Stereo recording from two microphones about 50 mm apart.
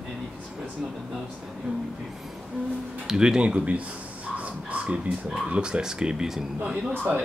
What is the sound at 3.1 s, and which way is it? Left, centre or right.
Speech, centre.